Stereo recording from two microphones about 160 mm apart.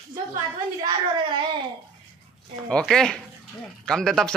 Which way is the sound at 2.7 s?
5° left (ahead or behind).